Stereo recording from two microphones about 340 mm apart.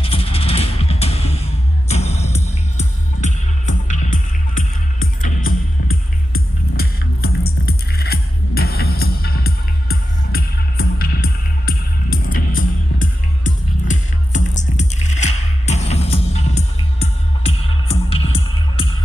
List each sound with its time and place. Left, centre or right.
0.0 s music: centre